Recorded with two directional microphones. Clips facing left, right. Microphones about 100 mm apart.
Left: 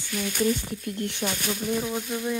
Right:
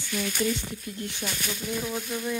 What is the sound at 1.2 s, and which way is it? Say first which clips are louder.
Speech: left 4 dB; 30° left (ahead or behind).